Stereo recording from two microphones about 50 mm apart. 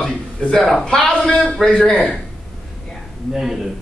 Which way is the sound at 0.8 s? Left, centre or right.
Centre.